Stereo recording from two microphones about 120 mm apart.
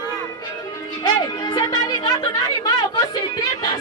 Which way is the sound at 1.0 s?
40° left (ahead or behind).